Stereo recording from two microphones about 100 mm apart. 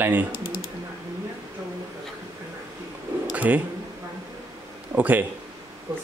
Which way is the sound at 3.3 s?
15° right (ahead or behind).